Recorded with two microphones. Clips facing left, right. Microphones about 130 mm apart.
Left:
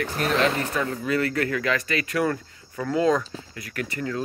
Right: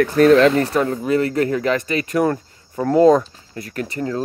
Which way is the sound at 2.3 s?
30° right (ahead or behind).